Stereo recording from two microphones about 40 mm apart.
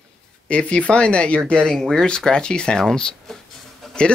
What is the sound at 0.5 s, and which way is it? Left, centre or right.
Speech, left.